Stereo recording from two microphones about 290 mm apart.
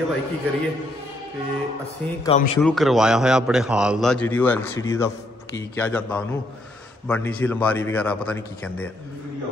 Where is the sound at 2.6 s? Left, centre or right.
Centre.